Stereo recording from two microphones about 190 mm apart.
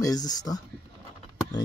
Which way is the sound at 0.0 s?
20° left (ahead or behind).